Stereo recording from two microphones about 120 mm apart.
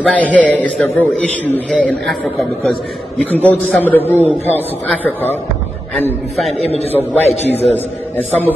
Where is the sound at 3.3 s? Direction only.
15° left (ahead or behind).